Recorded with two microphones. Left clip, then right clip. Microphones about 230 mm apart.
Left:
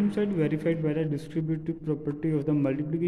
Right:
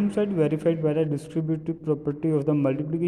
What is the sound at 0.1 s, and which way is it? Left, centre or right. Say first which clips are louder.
A man's voice: right 4 dB; centre.